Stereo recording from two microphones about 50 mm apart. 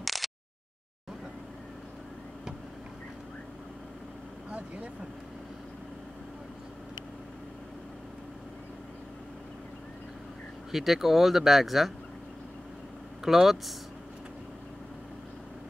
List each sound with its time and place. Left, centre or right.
0.0 s a sound: centre
4.5 s vehicle: right
10.7 s speech: centre
13.2 s speech: centre